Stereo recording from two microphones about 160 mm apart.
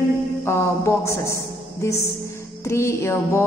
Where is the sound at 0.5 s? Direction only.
15° left (ahead or behind).